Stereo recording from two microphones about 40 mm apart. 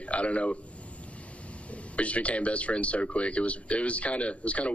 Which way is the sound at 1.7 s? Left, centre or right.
Left.